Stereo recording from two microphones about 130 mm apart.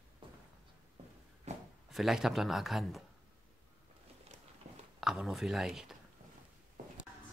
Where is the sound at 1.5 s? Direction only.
55° right (ahead or behind).